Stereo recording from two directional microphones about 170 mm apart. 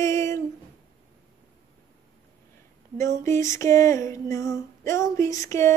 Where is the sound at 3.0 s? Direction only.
15° left (ahead or behind).